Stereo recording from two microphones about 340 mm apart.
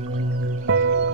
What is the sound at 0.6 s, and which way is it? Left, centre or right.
Music, right.